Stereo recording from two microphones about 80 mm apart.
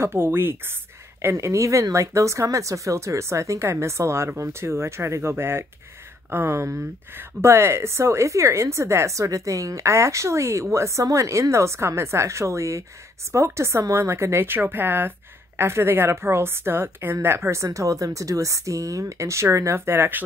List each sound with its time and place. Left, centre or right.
0.0 s speech: right
1.2 s speech: right